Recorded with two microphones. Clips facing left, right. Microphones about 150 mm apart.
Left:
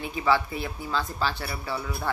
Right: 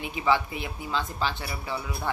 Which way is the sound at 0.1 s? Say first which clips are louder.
Left 1 dB; 20° right (ahead or behind).